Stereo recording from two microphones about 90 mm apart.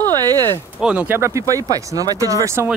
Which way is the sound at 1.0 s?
25° right (ahead or behind).